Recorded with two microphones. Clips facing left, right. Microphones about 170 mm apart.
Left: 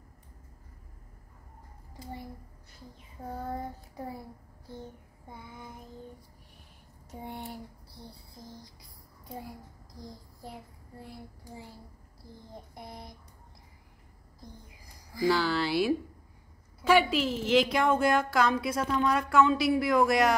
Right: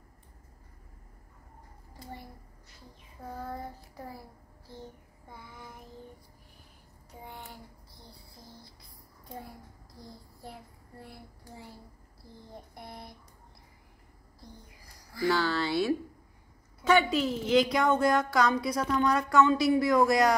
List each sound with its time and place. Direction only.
3.3 s child singing: 15° left (ahead or behind)
5.3 s child singing: 20° left (ahead or behind)
11.0 s child singing: 15° left (ahead or behind)
12.7 s child singing: 15° left (ahead or behind)
15.2 s speech: centre (ahead or behind)
16.8 s a sound: 5° left (ahead or behind)
17.4 s speech: 5° left (ahead or behind)